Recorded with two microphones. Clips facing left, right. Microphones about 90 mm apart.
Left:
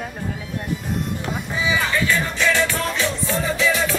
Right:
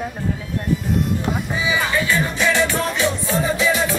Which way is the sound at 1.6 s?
15° right (ahead or behind).